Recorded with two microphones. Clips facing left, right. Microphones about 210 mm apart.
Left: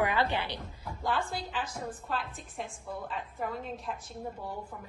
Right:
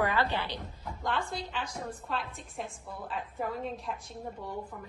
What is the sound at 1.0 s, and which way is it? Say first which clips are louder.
A woman's voice: left 1 dB; 5° left (ahead or behind).